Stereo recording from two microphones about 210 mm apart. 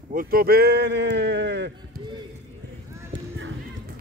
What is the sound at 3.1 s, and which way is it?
Clip-clop, 60° right (ahead or behind).